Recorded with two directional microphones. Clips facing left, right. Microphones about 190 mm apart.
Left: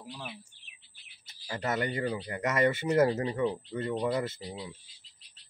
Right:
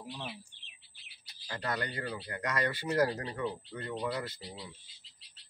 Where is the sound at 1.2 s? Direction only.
25° left (ahead or behind).